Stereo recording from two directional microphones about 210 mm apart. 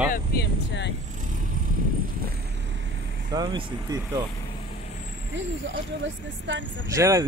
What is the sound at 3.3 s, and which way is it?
Speech, 20° right (ahead or behind).